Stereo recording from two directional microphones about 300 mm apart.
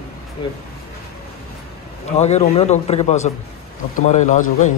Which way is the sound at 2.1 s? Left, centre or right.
Left.